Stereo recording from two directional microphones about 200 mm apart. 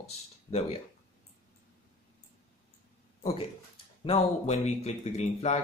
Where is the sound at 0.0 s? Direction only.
30° left (ahead or behind).